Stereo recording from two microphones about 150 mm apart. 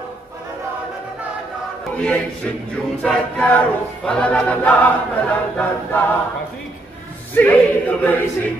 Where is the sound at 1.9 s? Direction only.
10° left (ahead or behind).